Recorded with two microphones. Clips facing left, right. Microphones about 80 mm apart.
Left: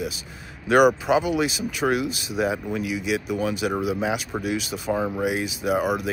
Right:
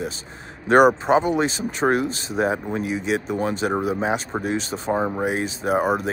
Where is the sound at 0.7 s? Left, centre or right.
Right.